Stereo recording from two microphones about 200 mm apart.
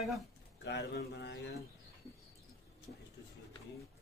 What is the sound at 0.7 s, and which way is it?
Speech, 60° left (ahead or behind).